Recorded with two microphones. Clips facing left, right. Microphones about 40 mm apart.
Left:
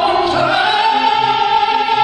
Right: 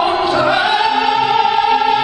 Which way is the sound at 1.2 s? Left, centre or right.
Left.